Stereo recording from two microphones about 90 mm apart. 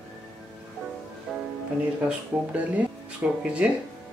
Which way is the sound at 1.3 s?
10° right (ahead or behind).